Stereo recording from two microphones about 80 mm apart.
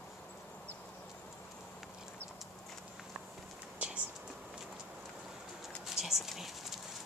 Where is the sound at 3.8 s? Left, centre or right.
Centre.